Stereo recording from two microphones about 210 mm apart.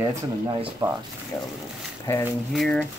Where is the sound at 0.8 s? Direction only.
20° right (ahead or behind).